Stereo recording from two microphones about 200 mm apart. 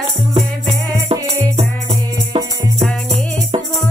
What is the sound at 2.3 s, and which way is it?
Music, 30° right (ahead or behind).